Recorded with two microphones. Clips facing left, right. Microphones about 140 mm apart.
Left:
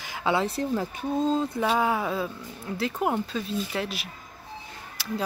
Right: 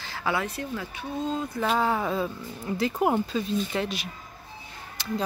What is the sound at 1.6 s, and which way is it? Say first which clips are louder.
Speech: left 1 dB; 10° left (ahead or behind).